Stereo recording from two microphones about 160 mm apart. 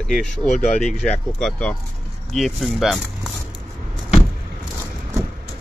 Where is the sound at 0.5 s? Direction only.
50° left (ahead or behind).